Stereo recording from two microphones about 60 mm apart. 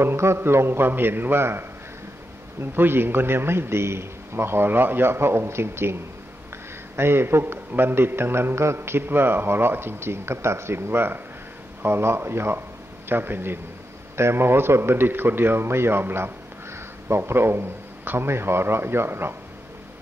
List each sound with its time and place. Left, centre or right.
0.0 s a man's voice: right
7.0 s a man's voice: right